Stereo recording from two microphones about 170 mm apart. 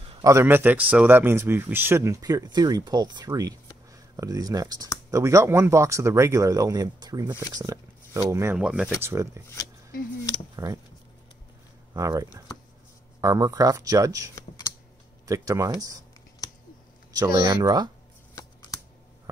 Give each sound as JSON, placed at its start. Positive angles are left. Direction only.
{"t": 0.2, "sound": "speech", "side_deg": -15}
{"t": 8.5, "sound": "speech", "side_deg": -5}
{"t": 10.5, "sound": "speech", "side_deg": -20}
{"t": 11.9, "sound": "speech", "side_deg": -20}
{"t": 17.2, "sound": "speech", "side_deg": -20}
{"t": 18.3, "sound": "shuffling cards", "side_deg": 20}